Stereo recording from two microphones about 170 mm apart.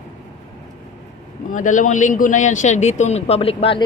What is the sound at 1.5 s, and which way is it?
A man's voice, 50° left (ahead or behind).